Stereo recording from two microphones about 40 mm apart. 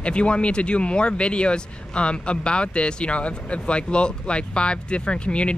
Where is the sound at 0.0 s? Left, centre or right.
Left.